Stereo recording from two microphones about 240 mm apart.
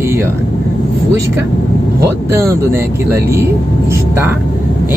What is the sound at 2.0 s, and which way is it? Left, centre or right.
Speech, centre.